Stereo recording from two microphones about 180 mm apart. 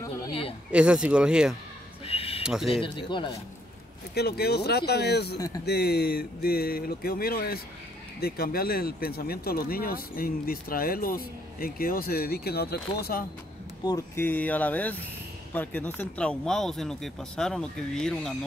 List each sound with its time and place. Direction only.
0.3 s a sound: 30° left (ahead or behind)
0.7 s speech: 5° right (ahead or behind)
2.0 s a sound: 35° left (ahead or behind)
2.4 s speech: 5° right (ahead or behind)
2.7 s speech: 25° left (ahead or behind)
4.1 s speech: 60° left (ahead or behind)
13.8 s speech: 15° left (ahead or behind)